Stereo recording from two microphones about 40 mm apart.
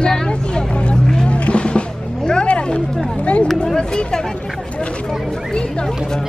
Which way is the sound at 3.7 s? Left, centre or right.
Left.